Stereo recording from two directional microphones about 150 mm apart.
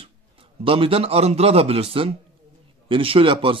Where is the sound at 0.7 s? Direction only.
35° right (ahead or behind).